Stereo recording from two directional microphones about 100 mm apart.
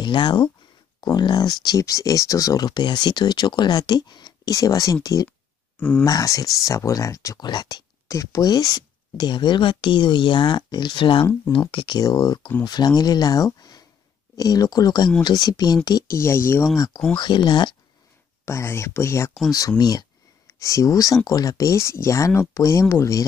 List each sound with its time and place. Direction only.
0.0 s speech: 50° left (ahead or behind)
5.8 s speech: 10° left (ahead or behind)
6.0 s speech: 35° left (ahead or behind); by 12.0 s 55° left (ahead or behind)
12.0 s speech: 40° left (ahead or behind)
16.2 s speech: 25° left (ahead or behind)
16.7 s speech: 40° left (ahead or behind)
17.2 s speech: 50° left (ahead or behind)
18.4 s speech: 25° left (ahead or behind)
19.8 s speech: 40° left (ahead or behind)